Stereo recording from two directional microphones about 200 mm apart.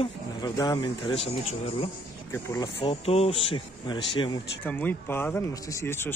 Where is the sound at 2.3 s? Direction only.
15° left (ahead or behind).